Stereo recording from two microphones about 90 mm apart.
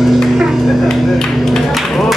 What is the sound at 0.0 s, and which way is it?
Music, centre (ahead or behind).